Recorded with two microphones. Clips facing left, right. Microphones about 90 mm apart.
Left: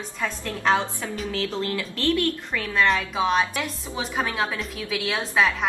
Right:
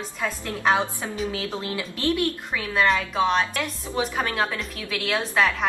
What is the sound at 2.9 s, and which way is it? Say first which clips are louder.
A woman's voice: right 1 dB; 5° left (ahead or behind).